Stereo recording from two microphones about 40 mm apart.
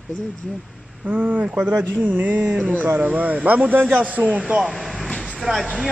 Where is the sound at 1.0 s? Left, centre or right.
Right.